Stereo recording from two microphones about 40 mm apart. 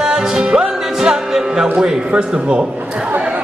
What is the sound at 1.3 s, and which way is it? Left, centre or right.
Speech, centre.